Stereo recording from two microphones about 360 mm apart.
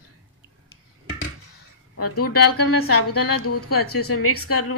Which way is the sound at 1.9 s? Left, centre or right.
Left.